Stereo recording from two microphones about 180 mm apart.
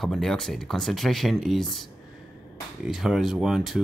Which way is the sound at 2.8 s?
Centre (ahead or behind).